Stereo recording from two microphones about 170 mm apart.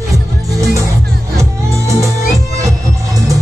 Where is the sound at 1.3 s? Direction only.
15° right (ahead or behind).